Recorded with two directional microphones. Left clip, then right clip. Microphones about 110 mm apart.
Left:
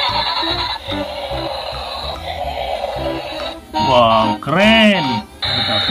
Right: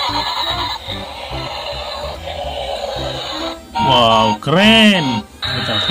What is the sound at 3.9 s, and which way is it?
Music, 25° right (ahead or behind).